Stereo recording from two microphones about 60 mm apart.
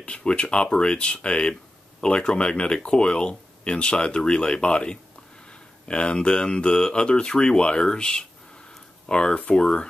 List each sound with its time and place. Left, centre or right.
0.0 s speech: centre